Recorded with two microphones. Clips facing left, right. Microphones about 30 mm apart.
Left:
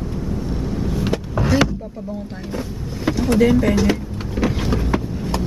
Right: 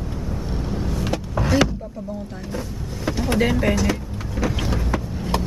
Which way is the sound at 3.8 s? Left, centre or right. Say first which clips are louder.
Left 4 dB; centre.